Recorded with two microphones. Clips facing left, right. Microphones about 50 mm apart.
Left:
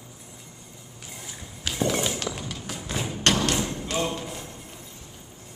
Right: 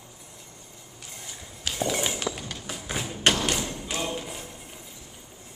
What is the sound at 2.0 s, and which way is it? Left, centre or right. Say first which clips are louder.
Walk: left 1 dB; right.